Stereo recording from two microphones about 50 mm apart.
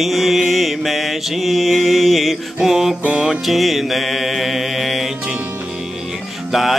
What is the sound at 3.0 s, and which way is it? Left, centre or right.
Music, right.